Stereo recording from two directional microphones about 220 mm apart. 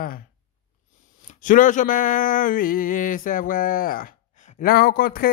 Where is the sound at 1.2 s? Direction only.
35° left (ahead or behind).